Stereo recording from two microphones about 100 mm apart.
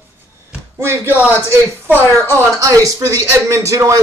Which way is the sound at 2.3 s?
35° right (ahead or behind).